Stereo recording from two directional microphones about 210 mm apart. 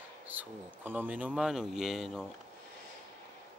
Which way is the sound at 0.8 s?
10° right (ahead or behind).